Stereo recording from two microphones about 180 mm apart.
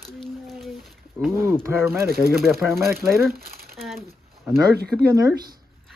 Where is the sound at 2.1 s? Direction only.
60° right (ahead or behind).